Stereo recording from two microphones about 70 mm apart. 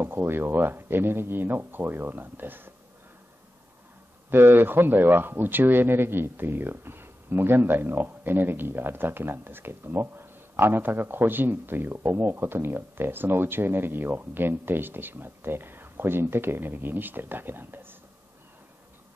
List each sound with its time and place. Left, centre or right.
0.0 s speech: right
4.3 s speech: right